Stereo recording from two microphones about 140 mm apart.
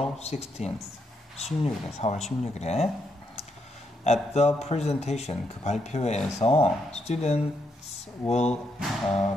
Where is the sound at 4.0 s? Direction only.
50° left (ahead or behind).